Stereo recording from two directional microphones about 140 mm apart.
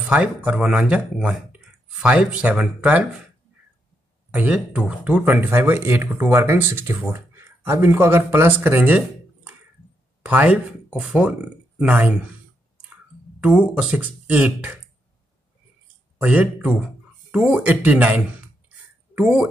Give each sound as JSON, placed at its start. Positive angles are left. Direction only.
{"t": 0.0, "sound": "speech", "side_deg": -10}
{"t": 4.3, "sound": "speech", "side_deg": -10}
{"t": 10.2, "sound": "speech", "side_deg": -10}
{"t": 13.4, "sound": "speech", "side_deg": -10}
{"t": 16.2, "sound": "speech", "side_deg": -10}